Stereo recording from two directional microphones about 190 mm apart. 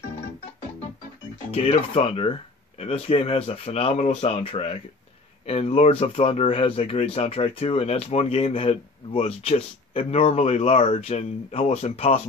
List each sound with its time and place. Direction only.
1.5 s speech: 30° left (ahead or behind)